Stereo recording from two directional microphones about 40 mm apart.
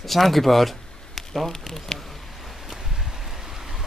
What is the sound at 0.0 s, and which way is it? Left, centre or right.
Speech, centre.